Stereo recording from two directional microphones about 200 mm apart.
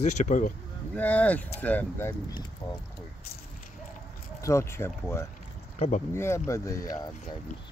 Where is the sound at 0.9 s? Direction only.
5° left (ahead or behind).